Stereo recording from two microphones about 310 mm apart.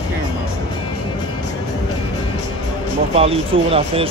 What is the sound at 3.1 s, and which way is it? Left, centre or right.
Speech, centre.